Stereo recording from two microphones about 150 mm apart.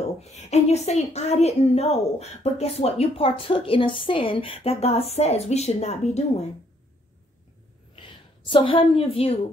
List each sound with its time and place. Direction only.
0.2 s speech: 50° left (ahead or behind)
8.5 s a woman's voice: 35° left (ahead or behind)